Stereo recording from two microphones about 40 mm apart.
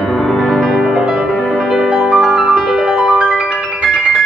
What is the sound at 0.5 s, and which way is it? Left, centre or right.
Music, centre.